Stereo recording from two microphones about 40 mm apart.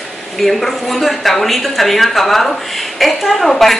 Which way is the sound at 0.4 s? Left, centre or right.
Centre.